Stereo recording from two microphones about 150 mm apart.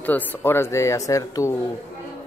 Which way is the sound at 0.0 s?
10° left (ahead or behind).